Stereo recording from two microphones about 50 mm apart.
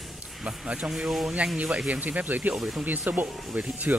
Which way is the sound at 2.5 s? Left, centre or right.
Centre.